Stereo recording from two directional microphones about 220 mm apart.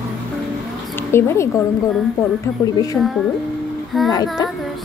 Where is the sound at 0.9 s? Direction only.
10° left (ahead or behind).